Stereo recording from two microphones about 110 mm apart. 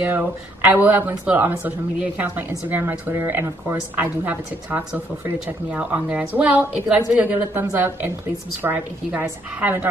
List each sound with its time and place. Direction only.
0.0 s a woman's voice: 20° right (ahead or behind)